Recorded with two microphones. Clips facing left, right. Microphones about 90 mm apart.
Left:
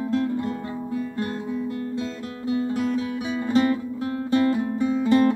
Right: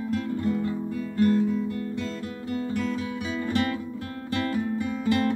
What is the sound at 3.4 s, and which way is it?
Music, 20° left (ahead or behind).